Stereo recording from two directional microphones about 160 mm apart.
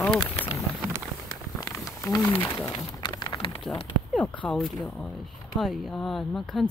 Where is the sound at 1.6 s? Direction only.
20° left (ahead or behind).